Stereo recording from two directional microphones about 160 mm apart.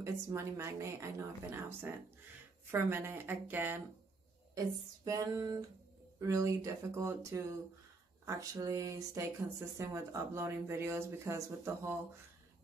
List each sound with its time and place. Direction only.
0.0 s speech: 15° right (ahead or behind)
5.0 s speech: 20° right (ahead or behind)